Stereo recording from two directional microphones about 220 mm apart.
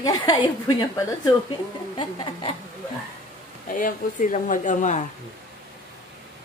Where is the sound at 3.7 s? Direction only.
40° left (ahead or behind).